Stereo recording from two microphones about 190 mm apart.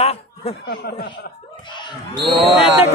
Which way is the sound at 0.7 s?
55° left (ahead or behind).